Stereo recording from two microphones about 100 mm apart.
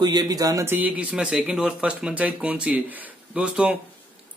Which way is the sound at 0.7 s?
15° right (ahead or behind).